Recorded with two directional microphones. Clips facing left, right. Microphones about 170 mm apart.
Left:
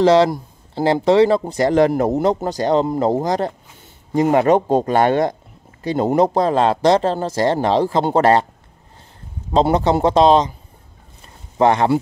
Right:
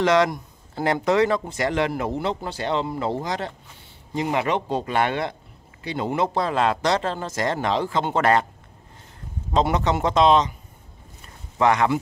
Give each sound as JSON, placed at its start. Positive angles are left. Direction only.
{"t": 0.0, "sound": "speech", "side_deg": 30}
{"t": 9.5, "sound": "speech", "side_deg": 30}
{"t": 11.5, "sound": "speech", "side_deg": 35}